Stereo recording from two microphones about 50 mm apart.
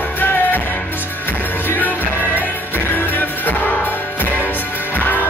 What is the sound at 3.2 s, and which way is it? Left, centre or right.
Music, left.